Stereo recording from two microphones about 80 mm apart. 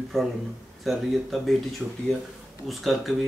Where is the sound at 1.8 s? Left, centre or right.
Right.